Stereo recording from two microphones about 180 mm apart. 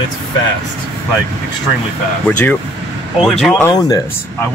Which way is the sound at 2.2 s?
10° left (ahead or behind).